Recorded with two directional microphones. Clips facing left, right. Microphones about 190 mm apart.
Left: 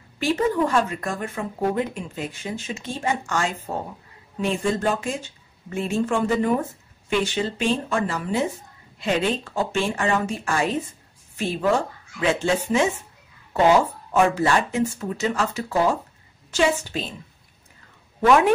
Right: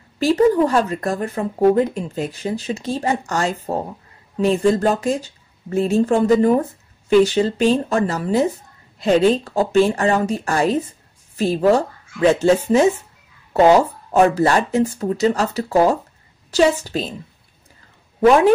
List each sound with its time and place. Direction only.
0.2 s a woman's voice: 35° right (ahead or behind)